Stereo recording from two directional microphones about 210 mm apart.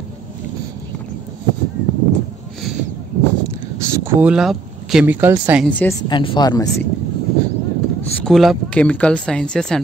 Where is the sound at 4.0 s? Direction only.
10° right (ahead or behind).